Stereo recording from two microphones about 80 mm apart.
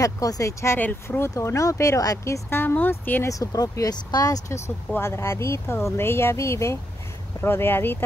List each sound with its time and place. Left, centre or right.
0.0 s speech: left
2.5 s speech: left
3.3 s speech: left
4.9 s speech: left